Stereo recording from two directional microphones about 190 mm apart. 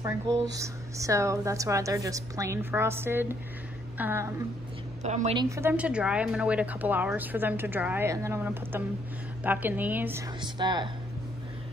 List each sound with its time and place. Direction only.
0.0 s a woman's voice: 15° right (ahead or behind)
5.0 s a woman's voice: 35° right (ahead or behind)
5.4 s a woman's voice: 15° right (ahead or behind)
10.4 s speech: 25° right (ahead or behind)